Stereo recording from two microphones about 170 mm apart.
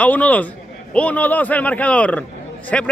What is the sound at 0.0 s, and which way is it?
A man's voice, 10° left (ahead or behind).